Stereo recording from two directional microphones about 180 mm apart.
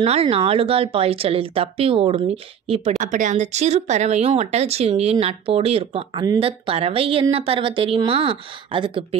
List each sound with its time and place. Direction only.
0.0 s speech: 35° right (ahead or behind)
3.0 s speech: 45° right (ahead or behind); by 9.2 s 30° right (ahead or behind)